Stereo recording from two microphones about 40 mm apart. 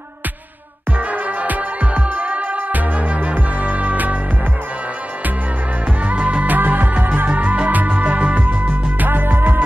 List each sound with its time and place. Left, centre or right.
0.9 s music: right
6.0 s music: right
6.5 s music: right